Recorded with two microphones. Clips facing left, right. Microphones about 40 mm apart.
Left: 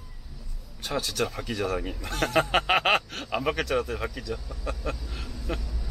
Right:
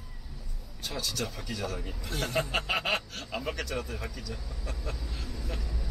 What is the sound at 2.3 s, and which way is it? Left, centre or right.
Chuckle, left.